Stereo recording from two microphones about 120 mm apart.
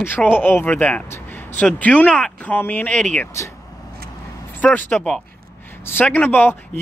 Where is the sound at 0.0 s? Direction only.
15° left (ahead or behind).